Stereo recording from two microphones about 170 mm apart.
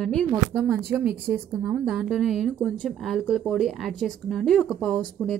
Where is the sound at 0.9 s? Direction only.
10° right (ahead or behind).